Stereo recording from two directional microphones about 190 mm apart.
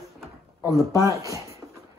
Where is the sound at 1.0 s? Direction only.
15° right (ahead or behind).